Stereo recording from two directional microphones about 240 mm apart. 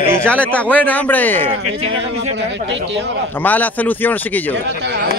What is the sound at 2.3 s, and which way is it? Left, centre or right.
Speech, right.